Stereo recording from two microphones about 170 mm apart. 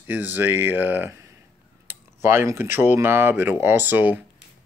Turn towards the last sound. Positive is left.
turn(degrees=-10)  # may be behind; listen again after turning